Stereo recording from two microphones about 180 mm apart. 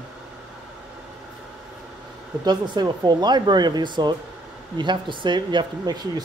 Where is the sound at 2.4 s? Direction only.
25° right (ahead or behind).